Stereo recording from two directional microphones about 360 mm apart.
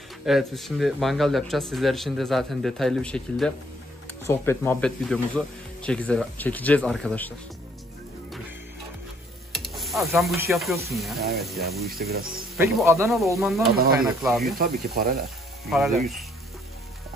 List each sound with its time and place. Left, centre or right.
0.2 s speech: centre
9.5 s stir: centre
10.5 s speech: centre
12.0 s speech: right
12.7 s speech: centre
15.0 s speech: right
15.7 s speech: centre